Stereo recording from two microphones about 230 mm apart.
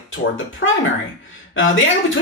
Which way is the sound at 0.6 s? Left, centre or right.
Left.